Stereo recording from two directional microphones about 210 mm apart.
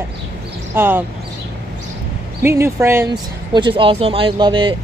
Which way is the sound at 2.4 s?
10° right (ahead or behind).